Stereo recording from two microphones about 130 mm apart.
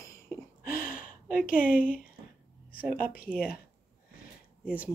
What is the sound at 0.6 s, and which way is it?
Gasp, 90° left.